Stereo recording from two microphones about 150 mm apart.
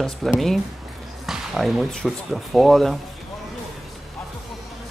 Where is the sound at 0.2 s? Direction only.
5° left (ahead or behind).